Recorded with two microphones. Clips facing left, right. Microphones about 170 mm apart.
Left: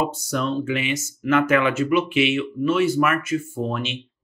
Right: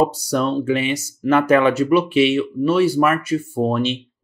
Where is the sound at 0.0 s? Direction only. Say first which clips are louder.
Right 6 dB; 35° right (ahead or behind).